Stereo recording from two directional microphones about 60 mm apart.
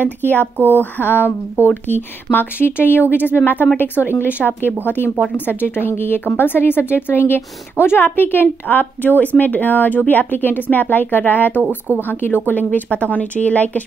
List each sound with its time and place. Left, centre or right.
0.0 s speech: left